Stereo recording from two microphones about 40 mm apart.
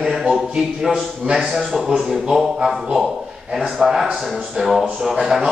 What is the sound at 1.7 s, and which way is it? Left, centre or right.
Speech, centre.